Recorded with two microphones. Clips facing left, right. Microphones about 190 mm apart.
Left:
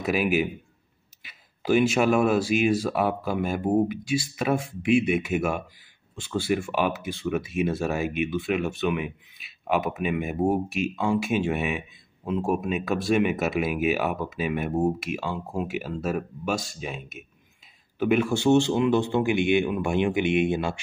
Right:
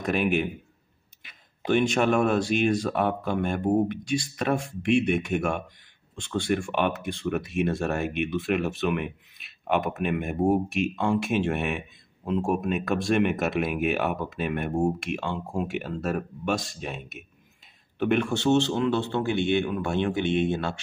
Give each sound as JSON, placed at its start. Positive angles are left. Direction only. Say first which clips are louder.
{"t": 0.0, "sound": "a man's voice", "louder": "left 1 dB", "side_deg": 5}